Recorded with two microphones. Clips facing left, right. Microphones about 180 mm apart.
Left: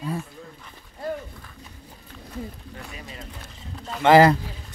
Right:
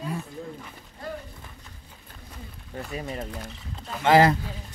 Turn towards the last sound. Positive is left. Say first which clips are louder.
# left 4 dB
turn(degrees=70)  # may be behind; listen again after turning